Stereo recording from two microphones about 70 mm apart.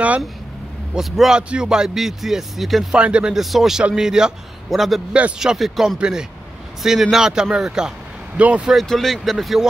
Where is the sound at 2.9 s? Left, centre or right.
Centre.